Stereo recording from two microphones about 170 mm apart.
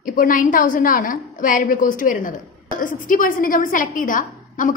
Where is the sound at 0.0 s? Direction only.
55° left (ahead or behind).